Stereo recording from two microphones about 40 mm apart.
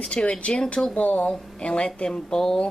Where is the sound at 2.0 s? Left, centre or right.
Centre.